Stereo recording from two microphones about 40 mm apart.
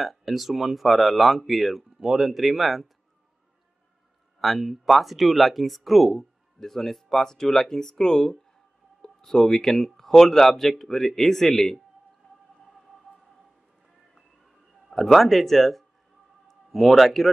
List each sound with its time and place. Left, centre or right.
0.0 s speech: centre
4.4 s speech: centre
12.2 s whale vocalization: left
15.1 s a man's voice: centre